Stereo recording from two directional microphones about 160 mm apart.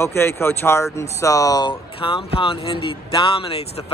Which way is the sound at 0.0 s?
15° left (ahead or behind).